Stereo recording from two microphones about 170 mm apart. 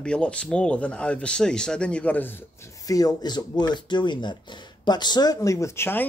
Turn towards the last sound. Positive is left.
turn(degrees=15)  # may be behind; listen again after turning